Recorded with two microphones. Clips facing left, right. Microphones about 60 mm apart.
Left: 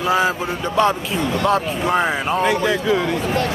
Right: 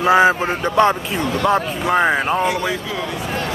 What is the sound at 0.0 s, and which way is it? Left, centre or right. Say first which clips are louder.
Speech: right 5 dB; right.